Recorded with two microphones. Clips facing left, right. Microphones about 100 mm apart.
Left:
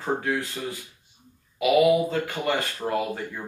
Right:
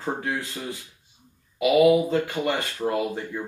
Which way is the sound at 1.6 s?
25° right (ahead or behind).